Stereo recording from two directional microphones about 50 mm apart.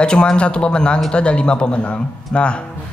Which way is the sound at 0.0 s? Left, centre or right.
Centre.